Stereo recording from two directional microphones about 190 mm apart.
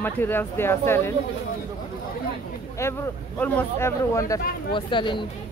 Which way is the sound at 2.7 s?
15° left (ahead or behind).